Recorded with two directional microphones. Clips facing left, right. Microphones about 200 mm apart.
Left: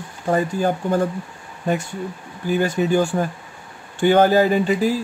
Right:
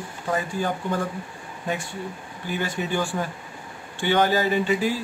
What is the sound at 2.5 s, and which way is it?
Speech, 45° left (ahead or behind).